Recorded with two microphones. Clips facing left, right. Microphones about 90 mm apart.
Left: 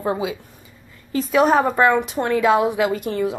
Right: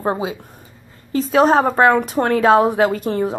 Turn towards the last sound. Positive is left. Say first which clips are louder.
# right 2 dB
turn(degrees=-40)  # may be behind; listen again after turning